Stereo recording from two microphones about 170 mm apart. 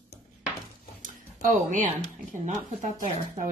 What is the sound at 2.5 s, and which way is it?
Speech, 45° right (ahead or behind).